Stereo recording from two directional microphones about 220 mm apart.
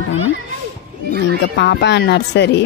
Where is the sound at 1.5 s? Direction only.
50° left (ahead or behind).